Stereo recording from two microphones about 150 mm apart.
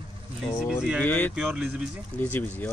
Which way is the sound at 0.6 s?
Centre (ahead or behind).